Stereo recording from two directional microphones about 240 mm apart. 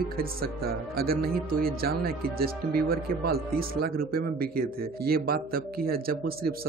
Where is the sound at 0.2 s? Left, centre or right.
Right.